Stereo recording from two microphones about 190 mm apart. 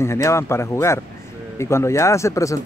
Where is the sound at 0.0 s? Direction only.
15° left (ahead or behind).